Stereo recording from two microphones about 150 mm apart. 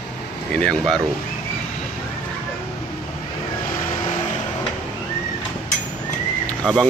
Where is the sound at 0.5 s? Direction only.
5° left (ahead or behind).